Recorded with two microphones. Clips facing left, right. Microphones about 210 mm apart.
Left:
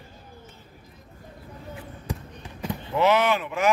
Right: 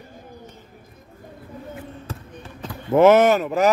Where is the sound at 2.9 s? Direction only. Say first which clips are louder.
Right 8 dB; 50° right (ahead or behind).